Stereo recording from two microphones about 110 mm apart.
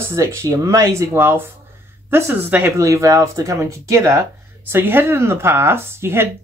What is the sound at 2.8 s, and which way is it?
Speech, 30° right (ahead or behind).